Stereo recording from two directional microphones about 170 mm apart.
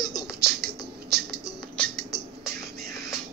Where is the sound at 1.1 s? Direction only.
70° right (ahead or behind).